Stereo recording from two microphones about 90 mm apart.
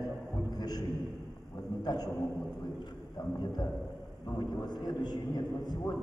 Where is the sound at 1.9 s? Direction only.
50° left (ahead or behind).